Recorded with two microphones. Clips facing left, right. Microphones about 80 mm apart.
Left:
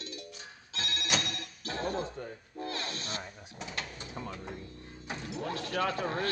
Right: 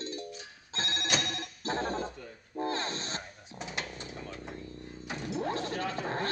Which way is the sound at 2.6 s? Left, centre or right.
Right.